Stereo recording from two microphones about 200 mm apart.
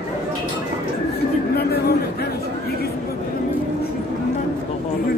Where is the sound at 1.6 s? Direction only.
55° left (ahead or behind).